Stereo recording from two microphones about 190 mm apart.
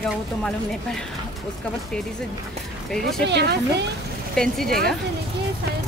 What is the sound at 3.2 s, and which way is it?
Speech, 60° right (ahead or behind).